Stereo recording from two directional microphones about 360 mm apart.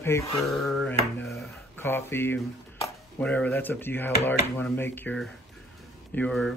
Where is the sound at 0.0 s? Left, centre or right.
Centre.